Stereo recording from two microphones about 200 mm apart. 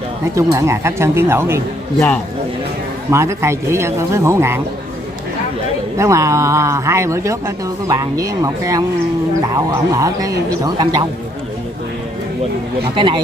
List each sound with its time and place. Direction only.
0.3 s a man's voice: 15° right (ahead or behind)
3.1 s a man's voice: 15° right (ahead or behind)
5.9 s a man's voice: 15° right (ahead or behind)
12.9 s speech: 25° right (ahead or behind)